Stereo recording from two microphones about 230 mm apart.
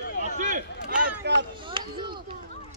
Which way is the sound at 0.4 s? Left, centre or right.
Right.